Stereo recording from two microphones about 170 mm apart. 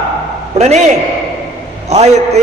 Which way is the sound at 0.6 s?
40° right (ahead or behind).